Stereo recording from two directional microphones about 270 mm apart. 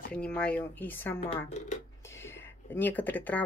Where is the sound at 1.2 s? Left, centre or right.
Left.